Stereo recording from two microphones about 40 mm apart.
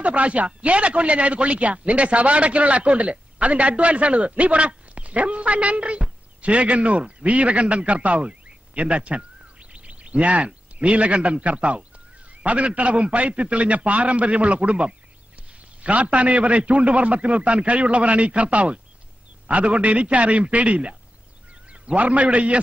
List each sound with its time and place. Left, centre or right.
0.0 s a man's voice: right